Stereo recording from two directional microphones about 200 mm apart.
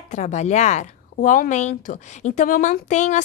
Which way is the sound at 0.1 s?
35° left (ahead or behind).